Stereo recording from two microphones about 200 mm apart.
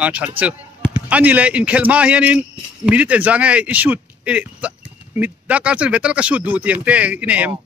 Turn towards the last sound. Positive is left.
turn(degrees=-5)  # may be behind; listen again after turning